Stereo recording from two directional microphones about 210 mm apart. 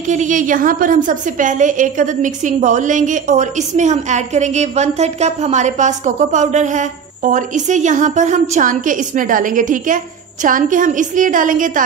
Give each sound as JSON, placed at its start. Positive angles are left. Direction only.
{"t": 0.0, "sound": "a woman's voice", "side_deg": -35}